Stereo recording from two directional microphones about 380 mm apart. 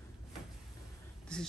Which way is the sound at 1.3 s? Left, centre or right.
Centre.